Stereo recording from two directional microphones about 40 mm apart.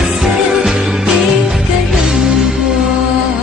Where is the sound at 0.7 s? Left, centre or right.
Right.